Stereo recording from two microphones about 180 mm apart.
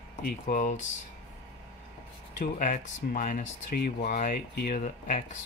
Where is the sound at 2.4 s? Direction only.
45° left (ahead or behind).